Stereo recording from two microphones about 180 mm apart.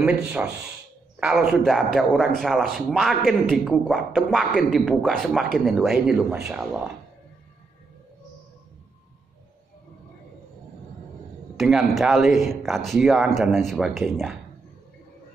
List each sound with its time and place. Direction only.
0.0 s a man's voice: 5° right (ahead or behind)
1.5 s a man's voice: centre (ahead or behind)
11.5 s a man's voice: centre (ahead or behind)